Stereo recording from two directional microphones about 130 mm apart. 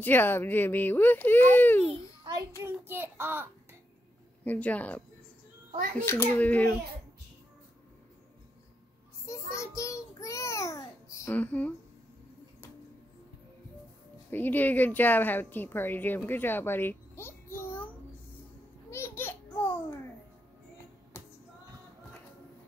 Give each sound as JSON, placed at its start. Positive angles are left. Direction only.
{"t": 0.0, "sound": "speech", "side_deg": 15}
{"t": 2.3, "sound": "child singing", "side_deg": -35}
{"t": 2.6, "sound": "a child's voice", "side_deg": -15}
{"t": 4.5, "sound": "speech", "side_deg": 10}
{"t": 6.0, "sound": "speech", "side_deg": 15}
{"t": 9.3, "sound": "a sound", "side_deg": 20}
{"t": 11.3, "sound": "speech", "side_deg": 10}
{"t": 14.3, "sound": "speech", "side_deg": 15}
{"t": 18.9, "sound": "babbling", "side_deg": 20}